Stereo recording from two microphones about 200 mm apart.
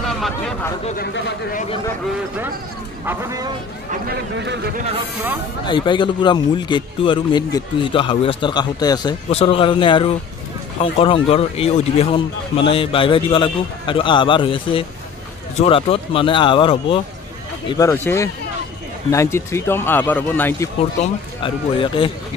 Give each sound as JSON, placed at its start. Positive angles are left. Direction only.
{"t": 0.9, "sound": "a man's voice", "side_deg": 45}
{"t": 3.1, "sound": "speech", "side_deg": -15}
{"t": 3.9, "sound": "speech", "side_deg": -50}
{"t": 5.7, "sound": "speech", "side_deg": 25}
{"t": 21.0, "sound": "speech", "side_deg": 25}